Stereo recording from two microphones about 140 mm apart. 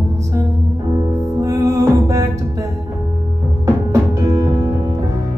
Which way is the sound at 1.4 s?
20° right (ahead or behind).